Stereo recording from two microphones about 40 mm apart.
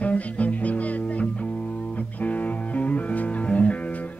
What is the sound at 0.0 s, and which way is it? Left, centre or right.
Music, left.